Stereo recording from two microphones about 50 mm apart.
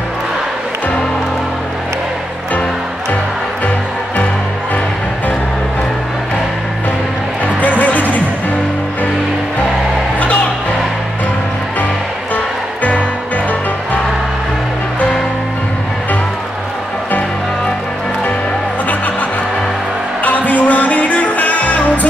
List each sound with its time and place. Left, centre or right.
7.6 s music: left
20.2 s music: left